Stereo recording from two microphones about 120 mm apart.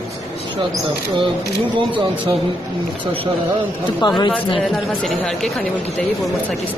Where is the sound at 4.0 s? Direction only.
35° left (ahead or behind).